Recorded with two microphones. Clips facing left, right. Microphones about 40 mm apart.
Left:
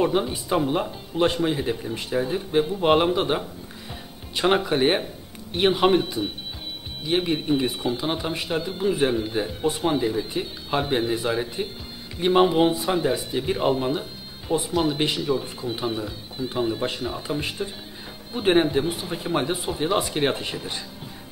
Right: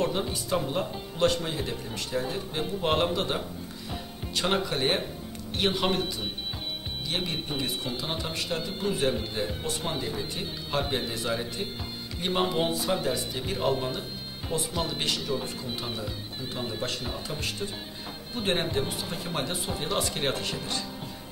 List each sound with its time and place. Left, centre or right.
0.0 s speech: centre
17.0 s speech: centre
17.4 s speech: left